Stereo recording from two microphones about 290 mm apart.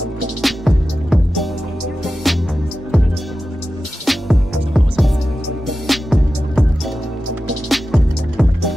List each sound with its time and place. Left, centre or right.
0.4 s music: centre
4.0 s music: centre
7.7 s music: centre